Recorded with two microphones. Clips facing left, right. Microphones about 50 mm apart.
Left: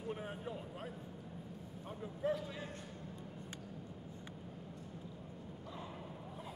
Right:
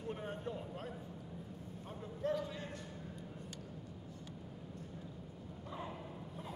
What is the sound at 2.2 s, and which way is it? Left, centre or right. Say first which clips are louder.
Speech: even; centre.